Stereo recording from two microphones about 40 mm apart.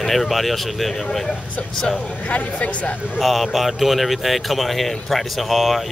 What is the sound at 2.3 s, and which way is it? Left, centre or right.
Speech, left.